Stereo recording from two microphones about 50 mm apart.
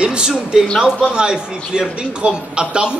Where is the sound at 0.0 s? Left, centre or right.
Centre.